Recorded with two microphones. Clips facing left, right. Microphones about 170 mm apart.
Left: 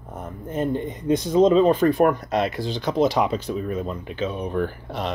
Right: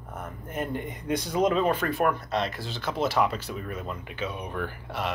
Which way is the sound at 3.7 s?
30° left (ahead or behind).